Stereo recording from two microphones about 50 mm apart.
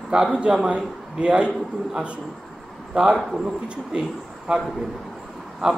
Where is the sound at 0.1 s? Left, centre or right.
Centre.